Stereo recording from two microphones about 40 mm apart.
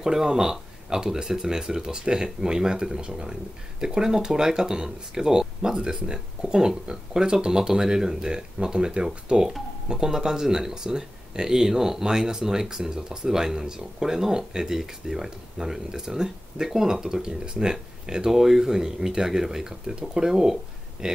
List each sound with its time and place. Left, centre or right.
0.0 s speech: centre